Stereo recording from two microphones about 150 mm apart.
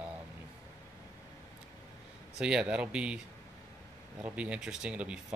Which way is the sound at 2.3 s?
5° right (ahead or behind).